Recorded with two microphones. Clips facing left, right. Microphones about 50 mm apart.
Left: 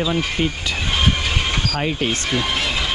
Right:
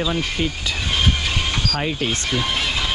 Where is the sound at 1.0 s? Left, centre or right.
Centre.